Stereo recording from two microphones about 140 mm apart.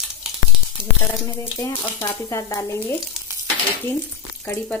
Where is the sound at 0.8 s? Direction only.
5° right (ahead or behind).